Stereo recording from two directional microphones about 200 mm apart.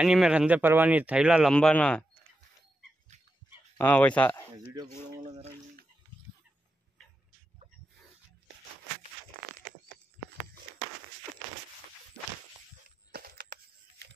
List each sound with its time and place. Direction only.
0.0 s speech: 5° right (ahead or behind)
3.7 s speech: 10° left (ahead or behind)
4.7 s speech: 20° right (ahead or behind)
13.1 s a sound: 50° right (ahead or behind)